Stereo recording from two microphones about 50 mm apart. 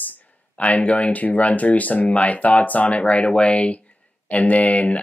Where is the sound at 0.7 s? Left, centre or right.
Left.